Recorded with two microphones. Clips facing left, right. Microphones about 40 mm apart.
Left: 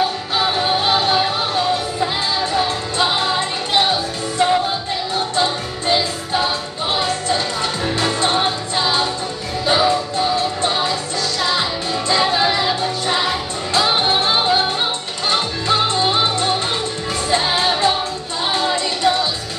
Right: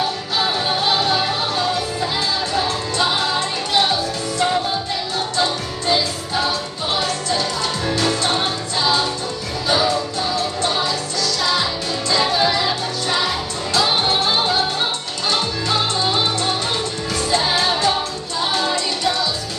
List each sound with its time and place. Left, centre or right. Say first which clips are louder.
0.4 s music: left 2 dB; centre
19.0 s music: left 5 dB; left